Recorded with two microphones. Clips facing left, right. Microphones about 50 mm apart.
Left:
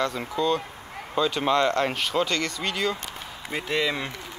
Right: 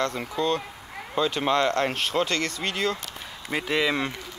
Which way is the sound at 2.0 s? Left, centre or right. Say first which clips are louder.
Even; right.